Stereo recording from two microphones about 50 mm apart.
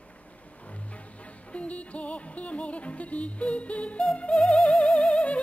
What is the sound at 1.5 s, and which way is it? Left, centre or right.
Music, left.